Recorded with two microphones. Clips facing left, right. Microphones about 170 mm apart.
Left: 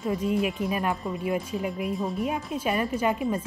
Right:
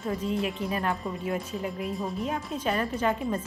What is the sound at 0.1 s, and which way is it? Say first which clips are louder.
A woman's voice: left 3 dB; 10° left (ahead or behind).